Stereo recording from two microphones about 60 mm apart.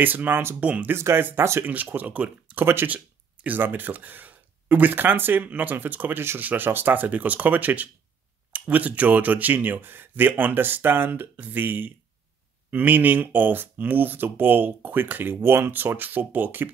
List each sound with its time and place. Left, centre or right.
0.0 s speech: right
0.6 s speech: centre
0.9 s speech: right
1.6 s speech: right
2.6 s speech: right